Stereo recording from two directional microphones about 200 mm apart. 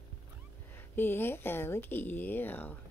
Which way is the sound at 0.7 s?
10° left (ahead or behind).